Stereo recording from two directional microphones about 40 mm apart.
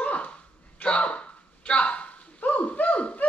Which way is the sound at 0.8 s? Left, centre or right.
Left.